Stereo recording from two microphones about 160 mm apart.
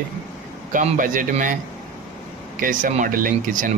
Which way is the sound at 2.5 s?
60° right (ahead or behind).